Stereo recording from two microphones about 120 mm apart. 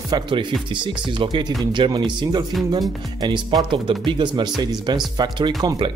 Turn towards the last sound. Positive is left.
turn(degrees=-35)  # may be behind; listen again after turning